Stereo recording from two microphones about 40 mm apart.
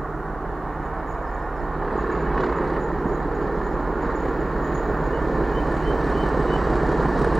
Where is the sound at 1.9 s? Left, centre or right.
Centre.